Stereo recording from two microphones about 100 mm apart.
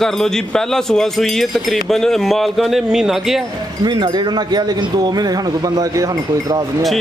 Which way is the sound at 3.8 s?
45° right (ahead or behind).